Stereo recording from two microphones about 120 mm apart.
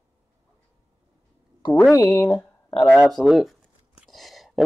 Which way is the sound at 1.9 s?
20° left (ahead or behind).